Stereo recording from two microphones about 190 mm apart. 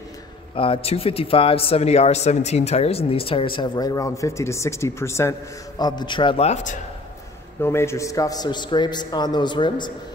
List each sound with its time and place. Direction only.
0.6 s speech: 30° left (ahead or behind)
7.6 s speech: 15° left (ahead or behind)